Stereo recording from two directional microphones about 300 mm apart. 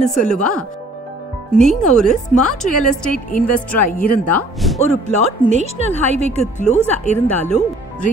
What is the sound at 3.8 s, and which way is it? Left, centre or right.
Speech, left.